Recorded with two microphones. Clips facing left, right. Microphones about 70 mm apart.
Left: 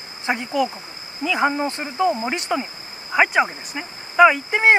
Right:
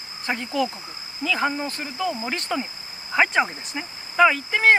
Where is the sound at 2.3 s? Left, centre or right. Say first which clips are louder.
Left 3 dB; centre.